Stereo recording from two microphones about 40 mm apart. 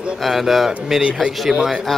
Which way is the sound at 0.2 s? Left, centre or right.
Centre.